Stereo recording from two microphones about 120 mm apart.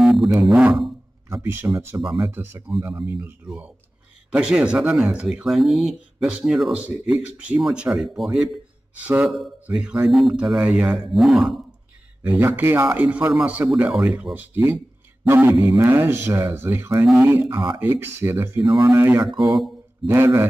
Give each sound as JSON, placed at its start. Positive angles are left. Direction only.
{"t": 0.0, "sound": "speech", "side_deg": 0}
{"t": 1.6, "sound": "speech", "side_deg": -20}
{"t": 8.9, "sound": "speech", "side_deg": -15}
{"t": 9.3, "sound": "speech", "side_deg": -5}
{"t": 12.2, "sound": "speech", "side_deg": -15}
{"t": 13.3, "sound": "speech", "side_deg": 0}
{"t": 19.4, "sound": "speech", "side_deg": 0}
{"t": 20.1, "sound": "speech", "side_deg": -25}